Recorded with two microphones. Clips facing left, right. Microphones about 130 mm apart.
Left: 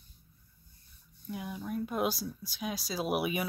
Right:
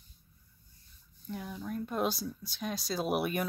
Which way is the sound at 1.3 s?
5° left (ahead or behind).